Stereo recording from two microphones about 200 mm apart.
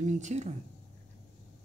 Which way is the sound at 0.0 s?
35° right (ahead or behind).